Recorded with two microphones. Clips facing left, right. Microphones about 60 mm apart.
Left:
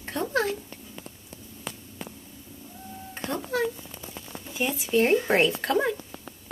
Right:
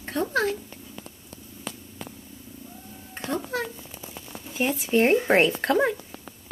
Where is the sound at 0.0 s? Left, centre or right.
Centre.